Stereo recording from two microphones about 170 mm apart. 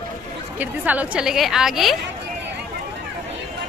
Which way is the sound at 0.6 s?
10° right (ahead or behind).